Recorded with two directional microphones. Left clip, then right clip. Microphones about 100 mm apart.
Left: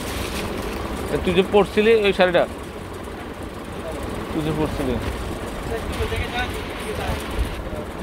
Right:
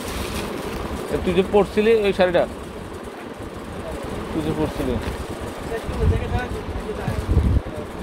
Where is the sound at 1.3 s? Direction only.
20° right (ahead or behind).